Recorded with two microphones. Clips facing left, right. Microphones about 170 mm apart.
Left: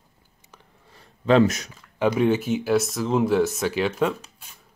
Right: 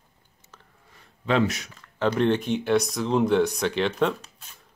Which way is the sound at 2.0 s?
10° left (ahead or behind).